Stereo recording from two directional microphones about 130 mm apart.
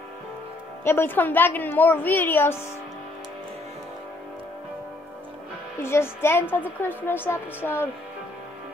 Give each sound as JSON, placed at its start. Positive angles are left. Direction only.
{"t": 0.8, "sound": "a woman's voice", "side_deg": 15}
{"t": 5.8, "sound": "a woman's voice", "side_deg": 20}